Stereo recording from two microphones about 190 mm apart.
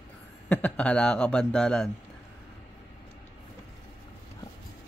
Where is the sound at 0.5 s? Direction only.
5° left (ahead or behind).